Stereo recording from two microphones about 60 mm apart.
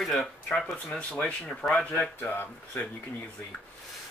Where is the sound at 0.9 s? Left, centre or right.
Left.